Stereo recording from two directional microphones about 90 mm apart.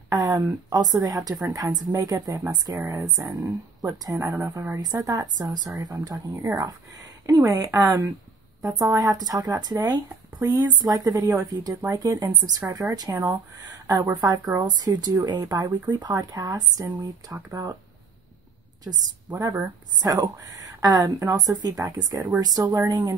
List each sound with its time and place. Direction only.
0.1 s a sound: 40° right (ahead or behind)
0.7 s speech: 45° right (ahead or behind)
18.9 s speech: 50° right (ahead or behind)